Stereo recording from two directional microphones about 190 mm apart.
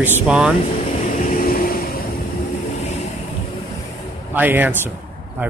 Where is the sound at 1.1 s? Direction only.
45° left (ahead or behind).